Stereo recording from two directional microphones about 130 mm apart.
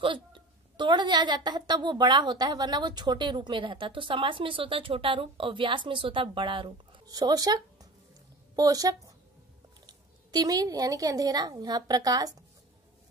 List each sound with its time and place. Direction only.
0.0 s a woman's voice: 40° right (ahead or behind)